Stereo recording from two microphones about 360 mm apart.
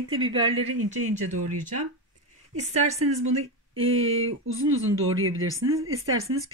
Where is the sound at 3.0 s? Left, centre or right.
Right.